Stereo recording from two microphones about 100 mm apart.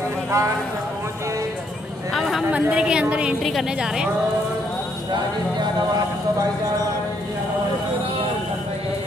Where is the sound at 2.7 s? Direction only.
10° right (ahead or behind).